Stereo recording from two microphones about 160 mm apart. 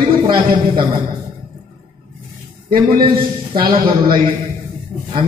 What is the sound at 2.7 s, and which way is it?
A man's voice, 35° right (ahead or behind).